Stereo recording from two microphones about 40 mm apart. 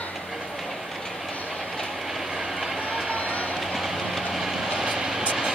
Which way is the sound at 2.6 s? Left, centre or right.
Centre.